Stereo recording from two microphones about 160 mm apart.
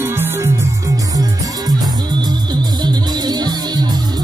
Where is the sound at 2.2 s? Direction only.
25° right (ahead or behind).